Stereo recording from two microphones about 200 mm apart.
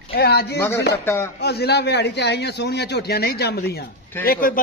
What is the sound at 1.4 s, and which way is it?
A man's voice, 55° left (ahead or behind).